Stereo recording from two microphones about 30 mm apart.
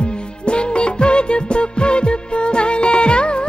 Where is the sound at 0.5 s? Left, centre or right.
Left.